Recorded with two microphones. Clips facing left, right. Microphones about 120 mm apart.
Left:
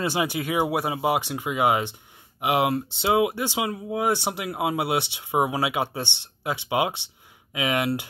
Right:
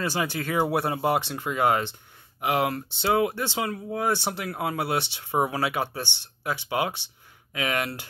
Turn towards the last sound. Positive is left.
turn(degrees=15)  # may be behind; listen again after turning